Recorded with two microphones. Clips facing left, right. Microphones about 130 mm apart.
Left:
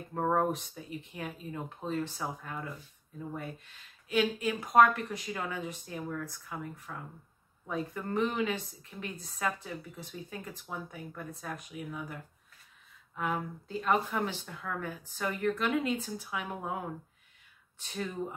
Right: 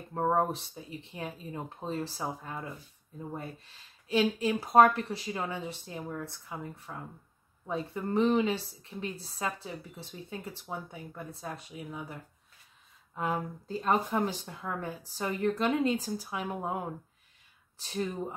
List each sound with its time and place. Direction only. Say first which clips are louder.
0.1 s a woman's voice: right 1 dB; 20° right (ahead or behind)
0.5 s a woman's voice: left 2 dB; 30° right (ahead or behind)
17.7 s speech: right 4 dB; 35° right (ahead or behind)